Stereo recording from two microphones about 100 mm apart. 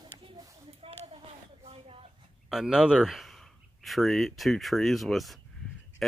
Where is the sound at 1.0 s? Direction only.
85° right.